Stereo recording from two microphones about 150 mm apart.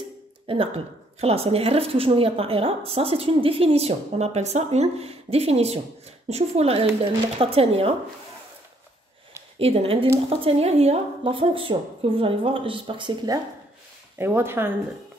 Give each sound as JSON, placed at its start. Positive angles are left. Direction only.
{"t": 0.5, "sound": "a woman's voice", "side_deg": -35}
{"t": 9.6, "sound": "a woman's voice", "side_deg": -40}
{"t": 14.1, "sound": "speech", "side_deg": -15}